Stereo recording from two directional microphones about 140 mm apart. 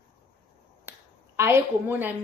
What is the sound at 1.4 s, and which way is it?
Speech, 15° right (ahead or behind).